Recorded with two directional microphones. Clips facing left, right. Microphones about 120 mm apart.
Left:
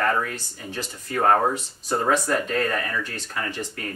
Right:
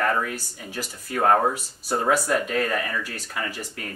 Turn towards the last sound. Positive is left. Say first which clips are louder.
# left 1 dB
turn(degrees=-10)  # may be behind; listen again after turning